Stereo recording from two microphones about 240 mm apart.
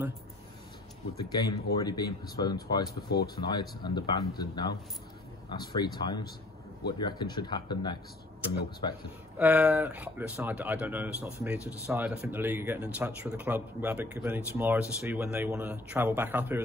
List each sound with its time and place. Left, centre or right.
1.1 s speech: centre
9.4 s speech: centre